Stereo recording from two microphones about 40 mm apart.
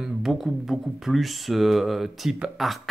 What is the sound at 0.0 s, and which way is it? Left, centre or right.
Speech, centre.